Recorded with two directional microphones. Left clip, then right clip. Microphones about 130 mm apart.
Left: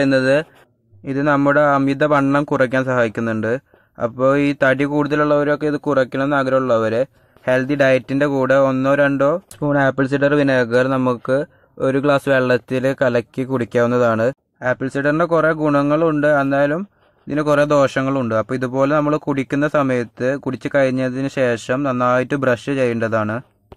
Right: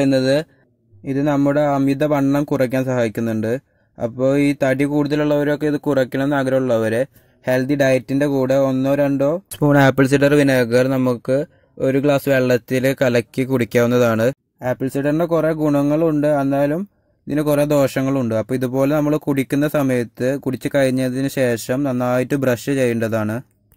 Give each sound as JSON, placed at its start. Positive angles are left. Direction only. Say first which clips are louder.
{"t": 0.1, "sound": "a man's voice", "louder": "left 2 dB", "side_deg": -30}
{"t": 9.6, "sound": "speech", "louder": "right 5 dB", "side_deg": -55}